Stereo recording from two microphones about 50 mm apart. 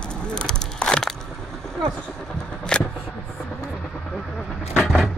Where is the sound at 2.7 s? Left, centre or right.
Centre.